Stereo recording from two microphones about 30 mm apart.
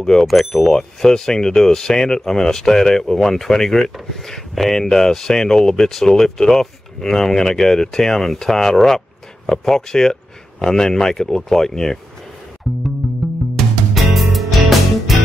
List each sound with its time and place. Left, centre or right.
0.2 s speech: centre
0.7 s speech: left
12.7 s music: centre